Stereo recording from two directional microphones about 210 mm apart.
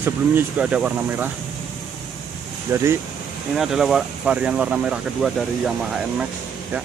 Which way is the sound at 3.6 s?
Centre (ahead or behind).